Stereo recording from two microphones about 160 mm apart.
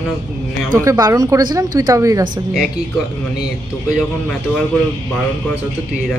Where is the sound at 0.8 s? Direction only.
20° right (ahead or behind).